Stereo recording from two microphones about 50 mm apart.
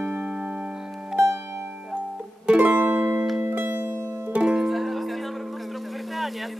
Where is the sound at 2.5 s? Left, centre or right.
Right.